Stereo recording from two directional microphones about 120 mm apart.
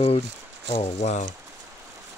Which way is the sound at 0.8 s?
80° left.